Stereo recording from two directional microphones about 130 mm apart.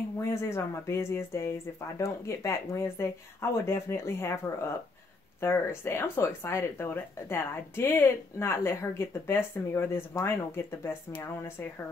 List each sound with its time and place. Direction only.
0.3 s speech: 20° left (ahead or behind)
5.4 s speech: 20° left (ahead or behind)